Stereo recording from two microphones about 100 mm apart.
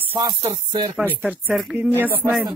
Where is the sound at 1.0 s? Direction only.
15° right (ahead or behind).